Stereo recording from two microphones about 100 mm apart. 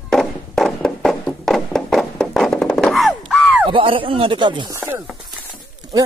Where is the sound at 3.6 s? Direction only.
60° right (ahead or behind).